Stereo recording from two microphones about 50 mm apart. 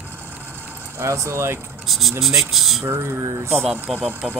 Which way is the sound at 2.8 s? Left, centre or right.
Right.